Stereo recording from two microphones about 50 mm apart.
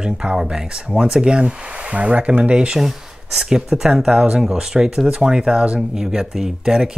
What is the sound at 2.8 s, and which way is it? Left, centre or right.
Speech, centre.